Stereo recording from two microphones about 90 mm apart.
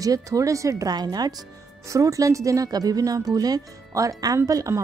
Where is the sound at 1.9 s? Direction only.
35° right (ahead or behind).